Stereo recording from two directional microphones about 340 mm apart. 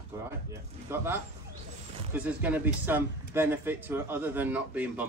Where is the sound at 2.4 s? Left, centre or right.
Centre.